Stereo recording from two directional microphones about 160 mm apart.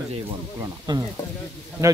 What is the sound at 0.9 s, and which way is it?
Speech, 30° right (ahead or behind).